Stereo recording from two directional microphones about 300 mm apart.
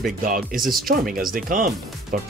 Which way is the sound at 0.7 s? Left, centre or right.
Right.